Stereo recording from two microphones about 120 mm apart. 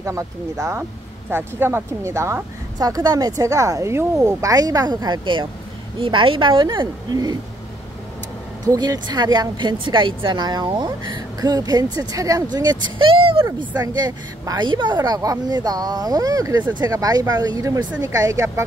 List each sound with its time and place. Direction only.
0.0 s a woman's voice: 25° right (ahead or behind)
8.6 s a woman's voice: 35° right (ahead or behind)
13.1 s vehicle: 50° right (ahead or behind)
13.6 s a woman's voice: 35° right (ahead or behind)